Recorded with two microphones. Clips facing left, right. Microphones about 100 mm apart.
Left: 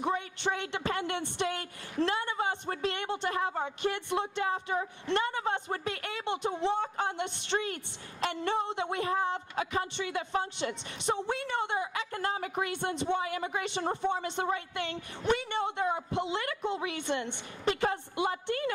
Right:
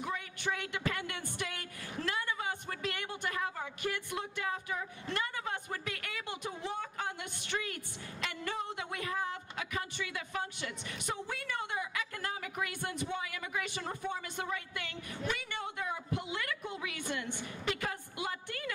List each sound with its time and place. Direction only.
0.0 s speech: 30° left (ahead or behind)